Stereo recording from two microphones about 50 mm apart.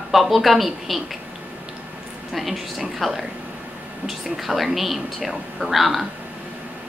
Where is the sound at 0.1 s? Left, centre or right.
Centre.